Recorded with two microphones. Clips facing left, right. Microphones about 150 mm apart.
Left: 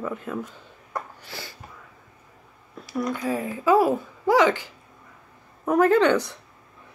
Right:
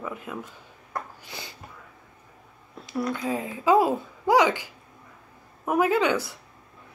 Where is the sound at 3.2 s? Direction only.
20° right (ahead or behind).